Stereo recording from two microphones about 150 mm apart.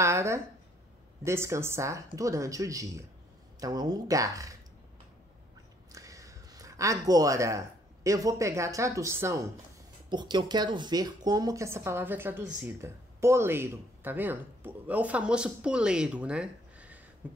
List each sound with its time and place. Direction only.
0.0 s speech: 20° right (ahead or behind)
5.9 s speech: 20° right (ahead or behind)
10.0 s speech: 30° right (ahead or behind); by 17.0 s 10° right (ahead or behind)